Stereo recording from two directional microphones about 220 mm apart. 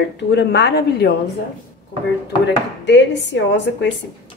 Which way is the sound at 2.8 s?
55° left (ahead or behind).